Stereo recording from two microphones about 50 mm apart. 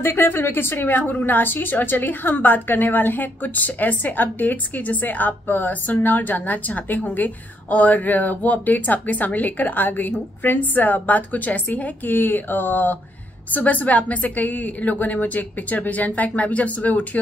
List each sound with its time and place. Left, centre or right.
0.0 s a woman's voice: left